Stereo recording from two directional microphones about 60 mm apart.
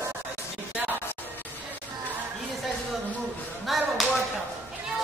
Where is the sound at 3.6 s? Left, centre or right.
Centre.